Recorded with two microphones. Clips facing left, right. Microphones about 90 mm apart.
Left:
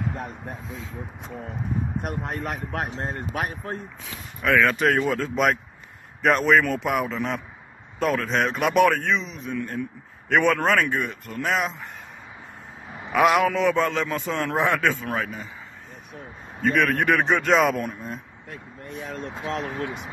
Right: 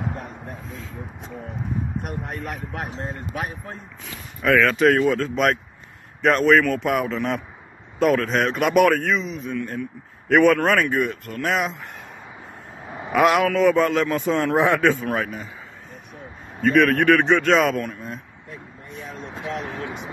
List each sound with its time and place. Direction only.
2.0 s speech: 45° left (ahead or behind)
3.0 s speech: 55° left (ahead or behind)
4.0 s a man's voice: centre (ahead or behind)
13.1 s a man's voice: centre (ahead or behind)
14.2 s speech: 15° right (ahead or behind)
15.0 s a man's voice: centre (ahead or behind)
16.6 s a man's voice: centre (ahead or behind)